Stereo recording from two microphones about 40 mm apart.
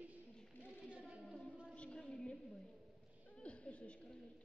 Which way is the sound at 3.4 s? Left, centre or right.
Left.